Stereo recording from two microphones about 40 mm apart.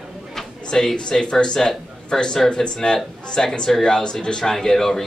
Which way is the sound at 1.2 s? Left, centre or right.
Left.